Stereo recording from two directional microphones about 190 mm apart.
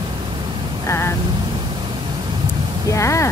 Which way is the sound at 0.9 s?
15° left (ahead or behind).